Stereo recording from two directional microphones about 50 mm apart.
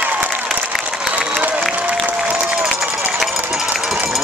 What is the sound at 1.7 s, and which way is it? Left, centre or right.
Applause, right.